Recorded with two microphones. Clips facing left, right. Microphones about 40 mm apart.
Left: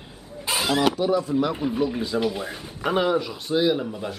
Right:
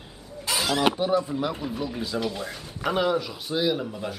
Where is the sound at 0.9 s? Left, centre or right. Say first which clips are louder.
Left 1 dB; centre.